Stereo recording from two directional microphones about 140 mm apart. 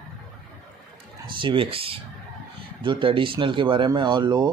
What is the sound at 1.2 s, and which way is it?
Speech, 35° right (ahead or behind).